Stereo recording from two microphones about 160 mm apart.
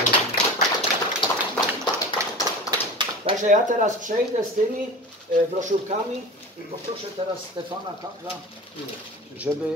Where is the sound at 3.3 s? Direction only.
50° right (ahead or behind).